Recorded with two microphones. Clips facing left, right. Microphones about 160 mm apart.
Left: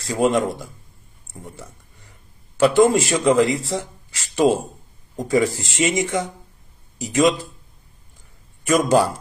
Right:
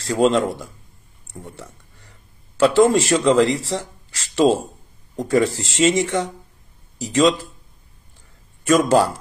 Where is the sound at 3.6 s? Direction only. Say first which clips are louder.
Even; 85° right.